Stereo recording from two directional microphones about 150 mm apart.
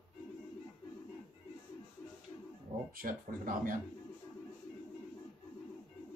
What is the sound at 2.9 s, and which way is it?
Speech, 70° right (ahead or behind).